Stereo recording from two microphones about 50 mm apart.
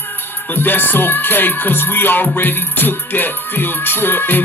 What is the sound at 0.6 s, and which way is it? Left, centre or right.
Music, left.